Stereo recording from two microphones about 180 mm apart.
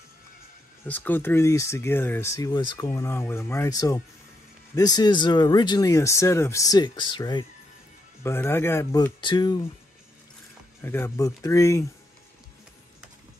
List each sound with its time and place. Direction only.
0.8 s speech: 10° left (ahead or behind)
8.2 s speech: 15° left (ahead or behind)
9.2 s speech: 25° left (ahead or behind)
10.8 s speech: 10° left (ahead or behind)